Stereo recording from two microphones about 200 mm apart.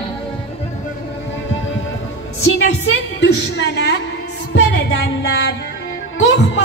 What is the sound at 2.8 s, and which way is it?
Music, 60° left (ahead or behind).